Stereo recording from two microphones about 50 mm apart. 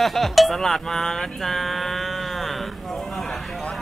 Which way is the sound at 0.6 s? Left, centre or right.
Centre.